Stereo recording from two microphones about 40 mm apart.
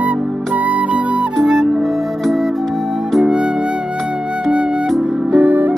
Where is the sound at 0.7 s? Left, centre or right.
Right.